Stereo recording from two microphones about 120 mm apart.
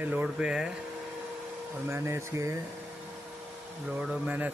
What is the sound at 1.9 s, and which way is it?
Speech, 25° right (ahead or behind).